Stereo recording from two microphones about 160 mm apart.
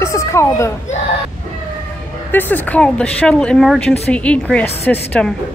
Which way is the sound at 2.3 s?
10° left (ahead or behind).